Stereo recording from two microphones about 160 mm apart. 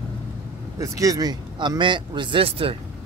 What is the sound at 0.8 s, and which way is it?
Speech, 20° right (ahead or behind).